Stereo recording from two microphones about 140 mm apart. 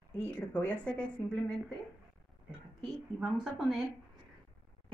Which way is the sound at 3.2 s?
5° right (ahead or behind).